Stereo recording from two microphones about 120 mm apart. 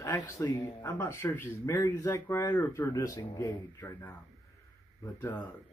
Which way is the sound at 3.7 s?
20° left (ahead or behind).